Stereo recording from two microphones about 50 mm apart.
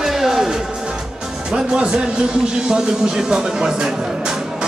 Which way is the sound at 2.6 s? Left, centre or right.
Centre.